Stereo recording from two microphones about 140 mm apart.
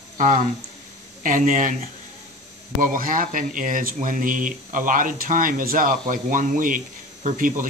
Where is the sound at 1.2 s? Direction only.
70° right (ahead or behind).